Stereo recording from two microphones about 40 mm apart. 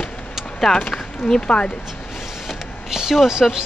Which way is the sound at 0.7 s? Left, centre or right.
Centre.